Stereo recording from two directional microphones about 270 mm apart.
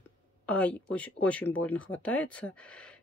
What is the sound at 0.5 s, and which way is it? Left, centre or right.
Speech, centre.